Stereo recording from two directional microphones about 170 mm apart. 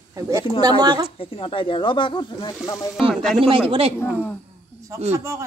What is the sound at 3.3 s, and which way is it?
Speech, 30° right (ahead or behind).